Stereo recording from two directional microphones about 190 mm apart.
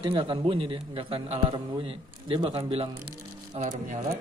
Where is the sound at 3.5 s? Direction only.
40° right (ahead or behind).